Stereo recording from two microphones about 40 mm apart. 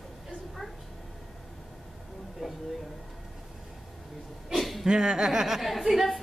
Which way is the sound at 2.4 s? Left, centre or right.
Centre.